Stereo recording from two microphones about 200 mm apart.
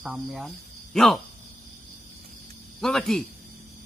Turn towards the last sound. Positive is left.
turn(degrees=0)  # may be behind; listen again after turning